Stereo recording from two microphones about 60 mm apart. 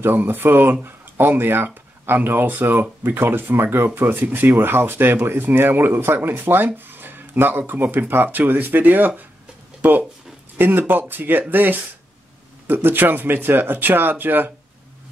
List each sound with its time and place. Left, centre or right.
0.0 s speech: right